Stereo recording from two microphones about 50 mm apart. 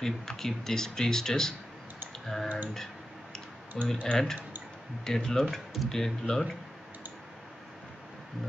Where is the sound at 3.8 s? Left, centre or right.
Centre.